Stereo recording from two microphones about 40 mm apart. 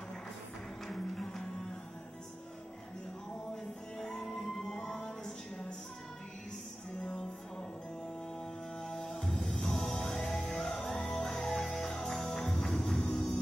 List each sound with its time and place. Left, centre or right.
0.8 s music: centre
4.2 s music: left
7.0 s music: centre
8.8 s music: centre
13.0 s music: left